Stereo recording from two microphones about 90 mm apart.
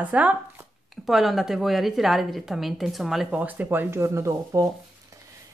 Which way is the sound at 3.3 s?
20° right (ahead or behind).